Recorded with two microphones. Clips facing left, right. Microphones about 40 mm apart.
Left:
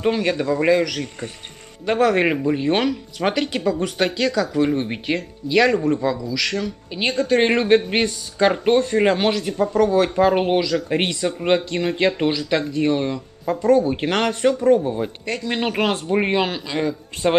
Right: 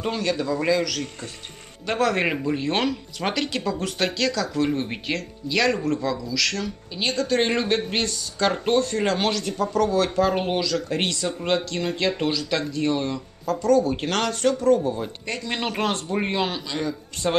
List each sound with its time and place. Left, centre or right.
0.0 s speech: centre